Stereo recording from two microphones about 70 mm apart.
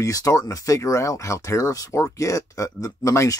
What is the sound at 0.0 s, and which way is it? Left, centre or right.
Speech, left.